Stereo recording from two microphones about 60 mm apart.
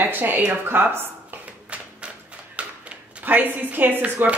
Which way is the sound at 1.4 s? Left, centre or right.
Right.